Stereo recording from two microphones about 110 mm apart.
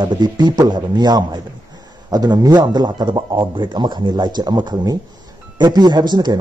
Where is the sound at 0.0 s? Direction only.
45° right (ahead or behind).